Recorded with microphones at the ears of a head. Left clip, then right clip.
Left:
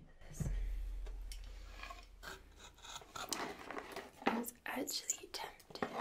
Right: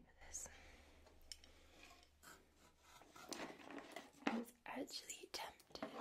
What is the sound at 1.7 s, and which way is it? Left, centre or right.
Filing, left.